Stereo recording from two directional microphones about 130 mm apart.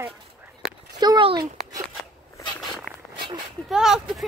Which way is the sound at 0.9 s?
30° right (ahead or behind).